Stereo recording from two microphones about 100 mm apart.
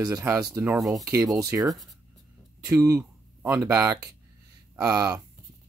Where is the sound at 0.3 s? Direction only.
20° right (ahead or behind).